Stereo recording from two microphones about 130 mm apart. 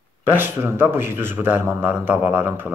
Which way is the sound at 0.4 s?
20° right (ahead or behind).